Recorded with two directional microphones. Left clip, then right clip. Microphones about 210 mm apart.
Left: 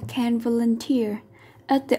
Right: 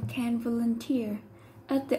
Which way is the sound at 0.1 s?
50° left (ahead or behind).